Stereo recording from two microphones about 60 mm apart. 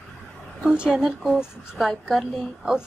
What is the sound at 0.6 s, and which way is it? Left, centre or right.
A woman's voice, centre.